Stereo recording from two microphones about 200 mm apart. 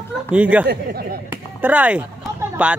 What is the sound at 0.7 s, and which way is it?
Speech, 50° right (ahead or behind).